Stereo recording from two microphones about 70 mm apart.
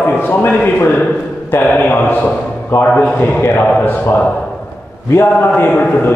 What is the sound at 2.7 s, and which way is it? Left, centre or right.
Speech, left.